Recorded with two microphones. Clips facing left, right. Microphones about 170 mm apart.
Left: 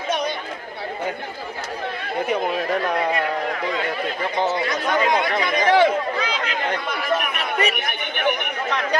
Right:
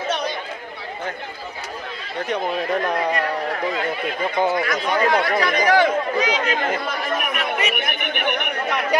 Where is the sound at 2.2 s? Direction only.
Centre (ahead or behind).